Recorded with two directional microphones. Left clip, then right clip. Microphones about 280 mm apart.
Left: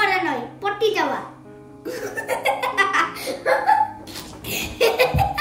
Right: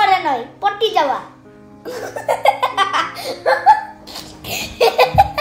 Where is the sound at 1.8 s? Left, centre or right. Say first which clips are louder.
Right 5 dB; centre.